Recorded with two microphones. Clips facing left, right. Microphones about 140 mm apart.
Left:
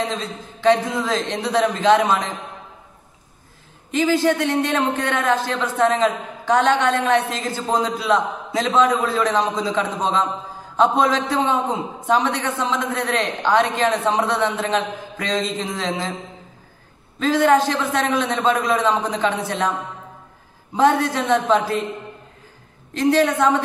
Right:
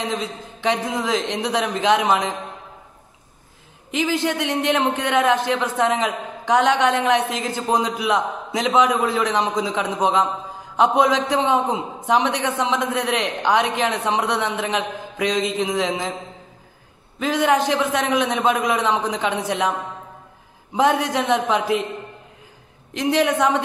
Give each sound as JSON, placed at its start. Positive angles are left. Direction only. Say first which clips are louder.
{"t": 0.0, "sound": "a man's voice", "louder": "left 1 dB", "side_deg": -15}
{"t": 3.9, "sound": "a man's voice", "louder": "left 4 dB", "side_deg": -15}
{"t": 17.2, "sound": "a man's voice", "louder": "left 3 dB", "side_deg": -15}
{"t": 20.7, "sound": "a man's voice", "louder": "left 1 dB", "side_deg": -15}
{"t": 22.9, "sound": "a man's voice", "louder": "left 2 dB", "side_deg": -15}